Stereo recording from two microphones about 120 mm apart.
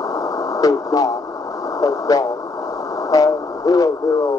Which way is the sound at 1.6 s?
30° left (ahead or behind).